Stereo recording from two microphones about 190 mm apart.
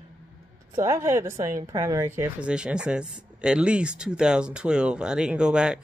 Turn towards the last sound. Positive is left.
turn(degrees=-5)  # may be behind; listen again after turning